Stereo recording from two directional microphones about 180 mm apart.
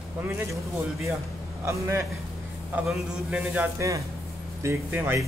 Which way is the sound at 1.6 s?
15° right (ahead or behind).